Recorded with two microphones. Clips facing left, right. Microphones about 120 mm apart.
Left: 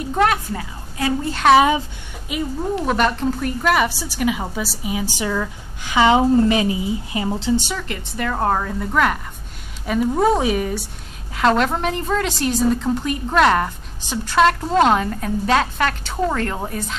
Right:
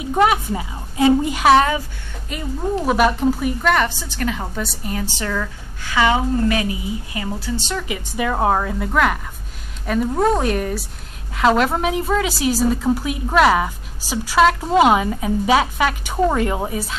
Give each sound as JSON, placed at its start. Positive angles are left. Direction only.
{"t": 0.0, "sound": "a woman's voice", "side_deg": -10}
{"t": 1.3, "sound": "a woman's voice", "side_deg": -5}
{"t": 2.3, "sound": "a woman's voice", "side_deg": 5}
{"t": 2.8, "sound": "a woman's voice", "side_deg": -5}
{"t": 3.6, "sound": "a woman's voice", "side_deg": 5}
{"t": 7.9, "sound": "a woman's voice", "side_deg": -10}